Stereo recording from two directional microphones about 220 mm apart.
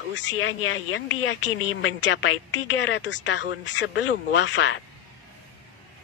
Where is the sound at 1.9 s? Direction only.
55° left (ahead or behind).